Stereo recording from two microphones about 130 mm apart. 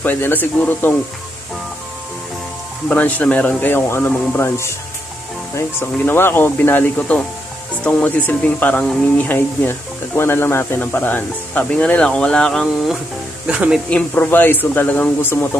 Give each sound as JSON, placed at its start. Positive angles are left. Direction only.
{"t": 0.0, "sound": "speech", "side_deg": 15}
{"t": 2.9, "sound": "speech", "side_deg": 15}
{"t": 13.5, "sound": "speech", "side_deg": -5}
{"t": 13.8, "sound": "speech", "side_deg": 10}